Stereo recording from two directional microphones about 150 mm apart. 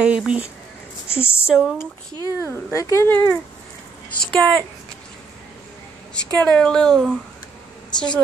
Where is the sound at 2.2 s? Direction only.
15° left (ahead or behind).